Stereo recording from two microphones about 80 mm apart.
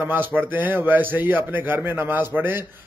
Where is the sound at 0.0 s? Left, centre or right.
Right.